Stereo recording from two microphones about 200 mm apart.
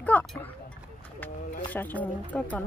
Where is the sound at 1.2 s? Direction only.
10° left (ahead or behind).